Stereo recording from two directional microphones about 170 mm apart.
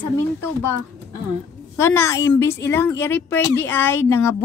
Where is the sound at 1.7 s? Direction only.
15° left (ahead or behind).